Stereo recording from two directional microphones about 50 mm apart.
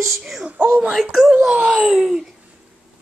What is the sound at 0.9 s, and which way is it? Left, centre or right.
Speech, centre.